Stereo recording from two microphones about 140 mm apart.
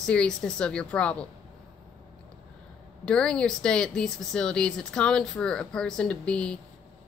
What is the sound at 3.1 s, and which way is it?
A woman's voice, 5° left (ahead or behind).